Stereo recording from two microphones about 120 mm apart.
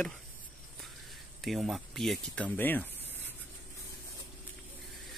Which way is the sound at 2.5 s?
15° left (ahead or behind).